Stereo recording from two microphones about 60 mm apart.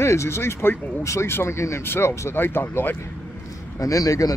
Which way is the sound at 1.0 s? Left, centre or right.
Left.